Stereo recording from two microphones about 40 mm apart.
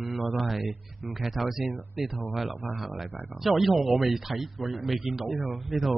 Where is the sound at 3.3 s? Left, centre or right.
Centre.